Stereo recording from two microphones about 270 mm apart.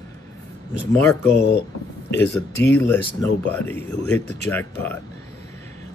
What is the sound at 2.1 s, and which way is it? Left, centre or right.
Speech, centre.